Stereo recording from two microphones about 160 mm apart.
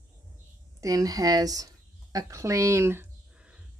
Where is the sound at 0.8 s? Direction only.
20° right (ahead or behind).